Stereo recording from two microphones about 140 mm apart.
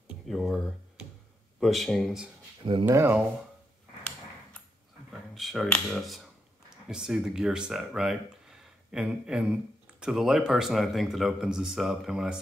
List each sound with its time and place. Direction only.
0.3 s speech: centre (ahead or behind)
2.8 s speech: 15° right (ahead or behind)
5.3 s speech: centre (ahead or behind)